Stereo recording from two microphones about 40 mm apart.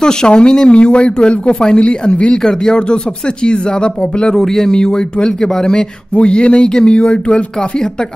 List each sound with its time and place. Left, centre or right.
0.0 s speech: left
2.4 s speech: centre
4.4 s speech: centre
6.1 s speech: left